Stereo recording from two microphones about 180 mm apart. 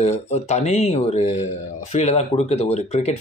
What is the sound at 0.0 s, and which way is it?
Speech, 40° left (ahead or behind).